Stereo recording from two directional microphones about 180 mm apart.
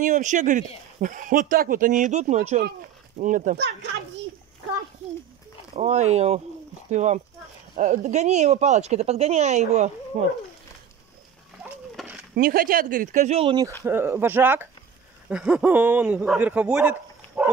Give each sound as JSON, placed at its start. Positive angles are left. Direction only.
{"t": 0.0, "sound": "speech", "side_deg": -45}
{"t": 3.5, "sound": "a child's voice", "side_deg": -65}
{"t": 5.8, "sound": "speech", "side_deg": -40}
{"t": 12.0, "sound": "a sound", "side_deg": -5}
{"t": 12.4, "sound": "speech", "side_deg": -50}
{"t": 13.8, "sound": "speech", "side_deg": -10}
{"t": 17.4, "sound": "pig", "side_deg": -10}